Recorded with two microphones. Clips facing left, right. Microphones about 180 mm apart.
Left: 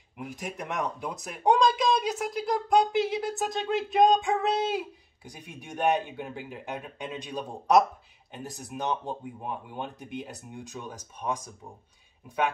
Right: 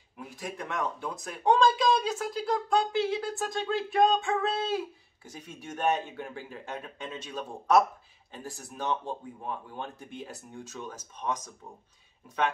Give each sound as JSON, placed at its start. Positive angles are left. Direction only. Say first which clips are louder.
{"t": 0.2, "sound": "speech", "louder": "left 2 dB", "side_deg": 20}